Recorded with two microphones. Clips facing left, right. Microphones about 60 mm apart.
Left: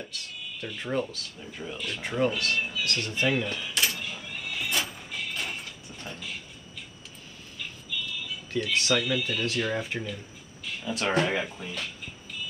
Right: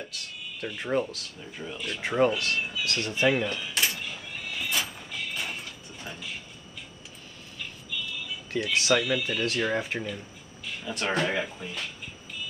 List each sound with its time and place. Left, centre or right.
0.6 s speech: centre
1.0 s speech: centre
2.0 s speech: centre
3.7 s a sound: right
4.1 s neigh: centre
8.5 s speech: centre